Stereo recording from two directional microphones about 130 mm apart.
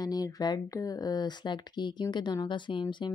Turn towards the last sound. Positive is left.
turn(degrees=35)  # may be behind; listen again after turning